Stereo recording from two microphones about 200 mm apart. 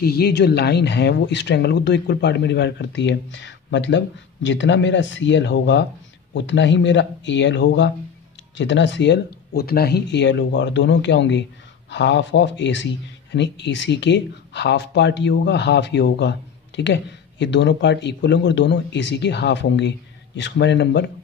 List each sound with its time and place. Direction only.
0.0 s speech: 50° left (ahead or behind)